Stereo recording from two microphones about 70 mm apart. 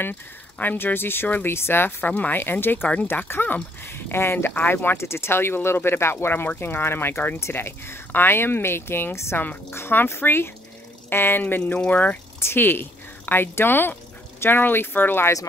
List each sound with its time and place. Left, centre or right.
0.0 s speech: left